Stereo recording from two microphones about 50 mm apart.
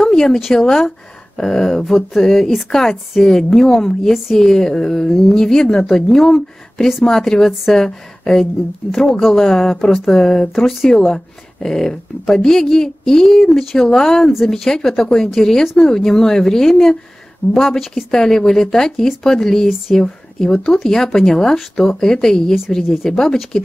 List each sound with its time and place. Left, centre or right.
0.0 s a sound: centre
0.4 s speech: centre
18.1 s speech: centre